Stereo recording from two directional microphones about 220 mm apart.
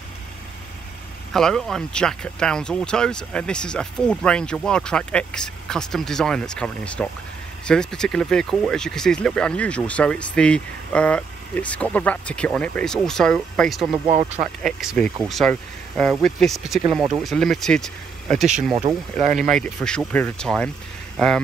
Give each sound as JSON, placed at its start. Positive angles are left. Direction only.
{"t": 1.3, "sound": "speech", "side_deg": 0}
{"t": 19.1, "sound": "speech", "side_deg": -35}
{"t": 19.5, "sound": "speech", "side_deg": 5}